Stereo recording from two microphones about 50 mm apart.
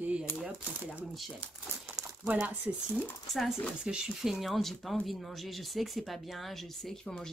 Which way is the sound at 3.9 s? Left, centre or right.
Centre.